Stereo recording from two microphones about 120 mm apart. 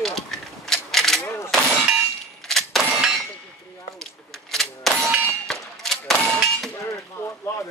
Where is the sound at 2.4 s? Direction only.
Centre (ahead or behind).